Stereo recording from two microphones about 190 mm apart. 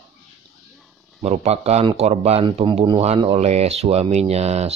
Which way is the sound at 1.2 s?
30° right (ahead or behind).